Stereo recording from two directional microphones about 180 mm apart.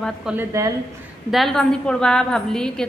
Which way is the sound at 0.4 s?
20° right (ahead or behind).